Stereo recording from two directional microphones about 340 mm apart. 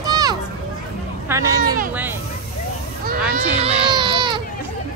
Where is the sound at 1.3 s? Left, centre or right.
Centre.